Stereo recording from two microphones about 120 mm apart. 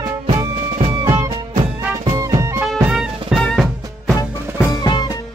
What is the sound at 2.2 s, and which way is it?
Music, 25° right (ahead or behind).